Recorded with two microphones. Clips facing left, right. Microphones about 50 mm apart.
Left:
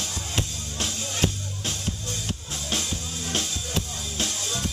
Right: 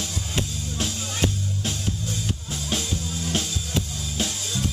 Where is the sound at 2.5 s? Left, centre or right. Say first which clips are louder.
Right 1 dB; centre.